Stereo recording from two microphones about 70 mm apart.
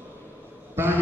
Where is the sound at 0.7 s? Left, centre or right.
Right.